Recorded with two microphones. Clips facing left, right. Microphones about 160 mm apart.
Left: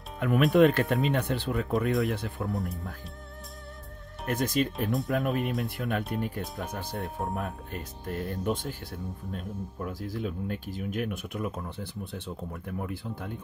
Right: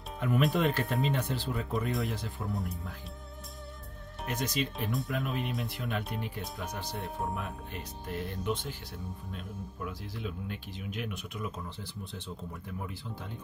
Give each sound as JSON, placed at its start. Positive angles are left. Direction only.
{"t": 0.5, "sound": "speech", "side_deg": 60}
{"t": 1.9, "sound": "speech", "side_deg": 0}
{"t": 2.1, "sound": "speech", "side_deg": 60}
{"t": 2.5, "sound": "speech", "side_deg": 0}
{"t": 4.3, "sound": "speech", "side_deg": 50}